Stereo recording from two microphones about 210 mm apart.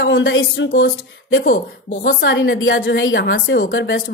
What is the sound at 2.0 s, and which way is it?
Speech, 60° left (ahead or behind).